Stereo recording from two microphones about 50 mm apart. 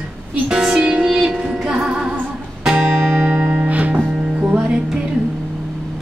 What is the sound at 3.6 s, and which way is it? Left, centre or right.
Music, right.